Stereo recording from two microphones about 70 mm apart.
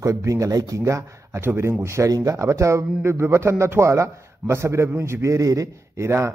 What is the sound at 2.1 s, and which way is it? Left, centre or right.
Speech, right.